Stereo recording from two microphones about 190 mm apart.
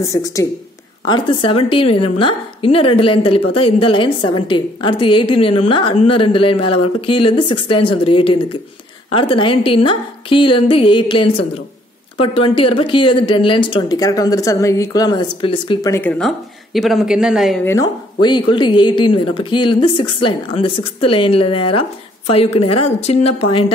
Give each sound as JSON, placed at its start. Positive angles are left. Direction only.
{"t": 0.1, "sound": "a woman's voice", "side_deg": 15}
{"t": 15.9, "sound": "speech", "side_deg": 10}
{"t": 17.6, "sound": "a woman's voice", "side_deg": 20}